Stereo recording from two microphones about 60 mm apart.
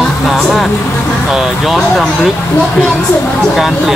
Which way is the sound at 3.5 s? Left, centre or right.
Centre.